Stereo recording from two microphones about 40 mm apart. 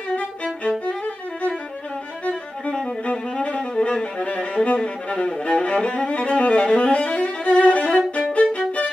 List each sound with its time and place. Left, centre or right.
0.1 s violin: left
3.1 s music: left
8.3 s violin: left